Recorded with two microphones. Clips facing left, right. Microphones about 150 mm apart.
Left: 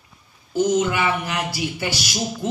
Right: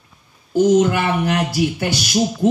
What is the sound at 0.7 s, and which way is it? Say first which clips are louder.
Speech: right 5 dB; 45° right (ahead or behind).